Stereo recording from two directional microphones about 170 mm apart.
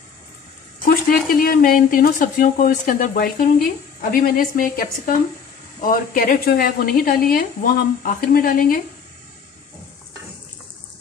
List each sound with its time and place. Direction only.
0.8 s speech: 60° left (ahead or behind)